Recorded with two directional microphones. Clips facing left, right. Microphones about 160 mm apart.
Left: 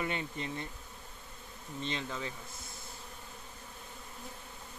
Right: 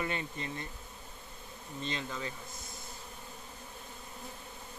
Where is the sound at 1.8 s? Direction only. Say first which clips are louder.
Even; 25° left (ahead or behind).